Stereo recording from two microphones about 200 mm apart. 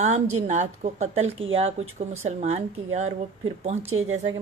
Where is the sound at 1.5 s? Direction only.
30° right (ahead or behind).